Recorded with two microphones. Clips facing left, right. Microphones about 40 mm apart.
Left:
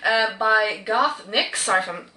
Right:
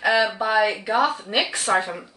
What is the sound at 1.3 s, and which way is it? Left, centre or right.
Speech, centre.